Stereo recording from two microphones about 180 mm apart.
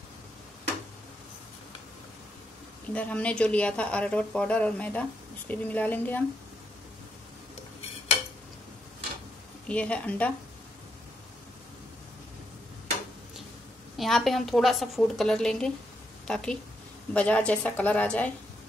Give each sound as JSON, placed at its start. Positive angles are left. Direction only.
{"t": 2.9, "sound": "a woman's voice", "side_deg": 5}
{"t": 9.7, "sound": "a woman's voice", "side_deg": 5}
{"t": 13.9, "sound": "a woman's voice", "side_deg": 0}